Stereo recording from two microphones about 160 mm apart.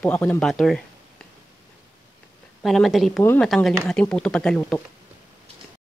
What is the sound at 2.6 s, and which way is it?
Speech, centre (ahead or behind).